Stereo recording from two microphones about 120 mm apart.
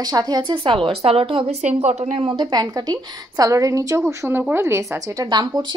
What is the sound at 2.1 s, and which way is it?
A woman's voice, 45° right (ahead or behind).